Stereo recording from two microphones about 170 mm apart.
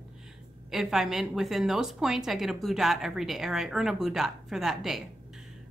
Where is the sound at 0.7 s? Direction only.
Centre (ahead or behind).